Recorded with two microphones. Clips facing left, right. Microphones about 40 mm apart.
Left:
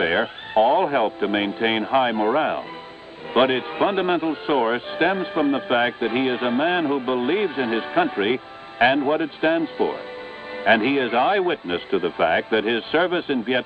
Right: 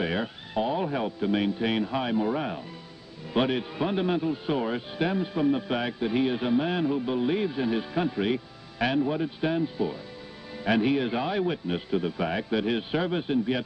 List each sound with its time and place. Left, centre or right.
0.0 s speech: left